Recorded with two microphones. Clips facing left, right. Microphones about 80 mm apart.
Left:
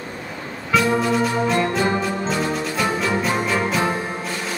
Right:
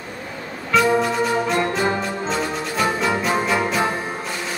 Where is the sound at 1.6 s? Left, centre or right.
Right.